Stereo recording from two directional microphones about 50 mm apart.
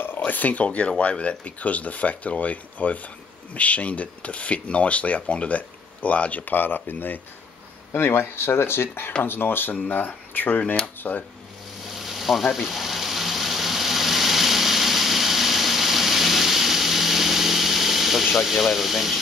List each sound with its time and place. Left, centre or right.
0.2 s speech: left
7.9 s speech: left
11.9 s a sound: centre